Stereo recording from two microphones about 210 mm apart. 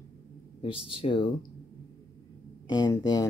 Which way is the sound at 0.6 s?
25° left (ahead or behind).